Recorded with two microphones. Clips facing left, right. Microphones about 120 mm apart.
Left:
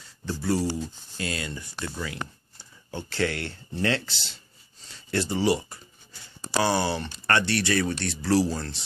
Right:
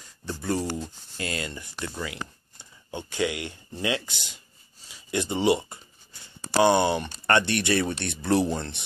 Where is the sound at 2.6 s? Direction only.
20° right (ahead or behind).